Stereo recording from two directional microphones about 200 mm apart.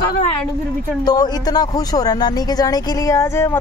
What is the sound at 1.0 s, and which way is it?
Speech, 20° left (ahead or behind).